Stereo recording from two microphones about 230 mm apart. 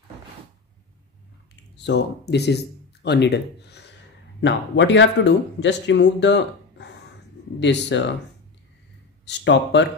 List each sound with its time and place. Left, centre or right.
1.9 s speech: left
9.2 s speech: left